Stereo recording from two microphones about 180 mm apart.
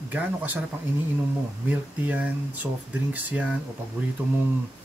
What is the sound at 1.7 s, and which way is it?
Speech, 10° right (ahead or behind).